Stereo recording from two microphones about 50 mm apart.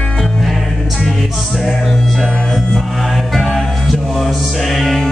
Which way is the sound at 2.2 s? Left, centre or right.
Centre.